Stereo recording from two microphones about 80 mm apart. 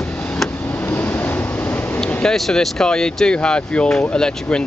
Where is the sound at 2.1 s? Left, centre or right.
Centre.